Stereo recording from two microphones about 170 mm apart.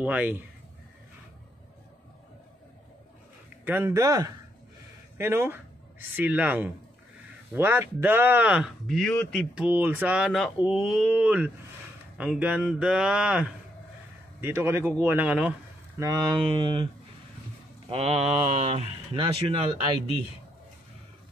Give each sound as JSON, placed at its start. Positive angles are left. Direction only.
{"t": 0.0, "sound": "speech", "side_deg": -10}
{"t": 3.6, "sound": "a man's voice", "side_deg": -10}
{"t": 16.0, "sound": "speech", "side_deg": -25}